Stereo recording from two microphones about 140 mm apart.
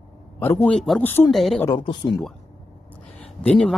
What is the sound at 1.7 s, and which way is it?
Speech, 35° left (ahead or behind).